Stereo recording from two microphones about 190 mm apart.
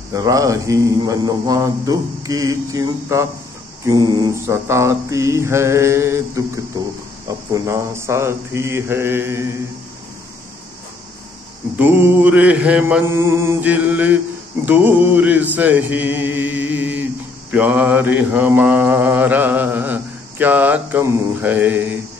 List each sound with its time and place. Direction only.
0.1 s mantra: 20° right (ahead or behind)
11.8 s mantra: 10° right (ahead or behind)